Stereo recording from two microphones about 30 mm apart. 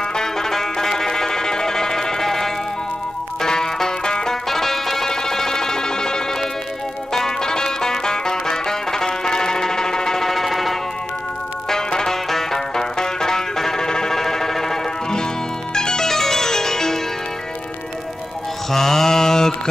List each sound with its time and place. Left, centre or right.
0.1 s music: centre
4.3 s music: centre
10.2 s music: centre
11.9 s music: left
15.7 s music: left
16.1 s music: centre
18.7 s mantra: centre